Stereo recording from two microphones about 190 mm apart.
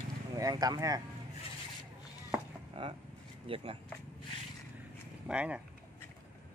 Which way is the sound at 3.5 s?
30° right (ahead or behind).